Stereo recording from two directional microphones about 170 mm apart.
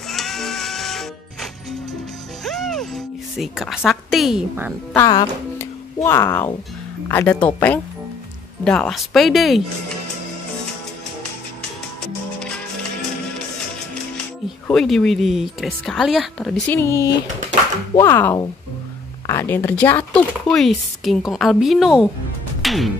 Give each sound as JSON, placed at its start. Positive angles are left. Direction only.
{"t": 0.1, "sound": "music", "side_deg": 0}
{"t": 4.9, "sound": "speech", "side_deg": 20}
{"t": 5.6, "sound": "music", "side_deg": 15}
{"t": 7.1, "sound": "speech", "side_deg": 10}
{"t": 14.7, "sound": "speech", "side_deg": 5}
{"t": 22.6, "sound": "music", "side_deg": 0}